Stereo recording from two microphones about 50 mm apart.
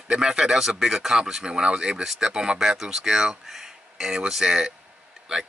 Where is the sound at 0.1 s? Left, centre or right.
Centre.